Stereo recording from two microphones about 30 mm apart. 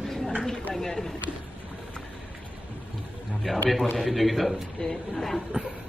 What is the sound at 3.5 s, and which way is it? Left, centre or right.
A man's voice, centre.